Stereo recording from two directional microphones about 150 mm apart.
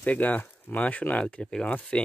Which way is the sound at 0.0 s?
10° left (ahead or behind).